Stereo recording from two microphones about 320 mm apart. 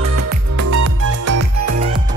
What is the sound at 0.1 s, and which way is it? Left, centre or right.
Music, right.